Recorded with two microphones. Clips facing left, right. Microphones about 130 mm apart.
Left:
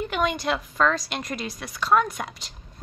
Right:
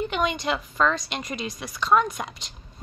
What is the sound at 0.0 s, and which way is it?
A woman's voice, centre (ahead or behind).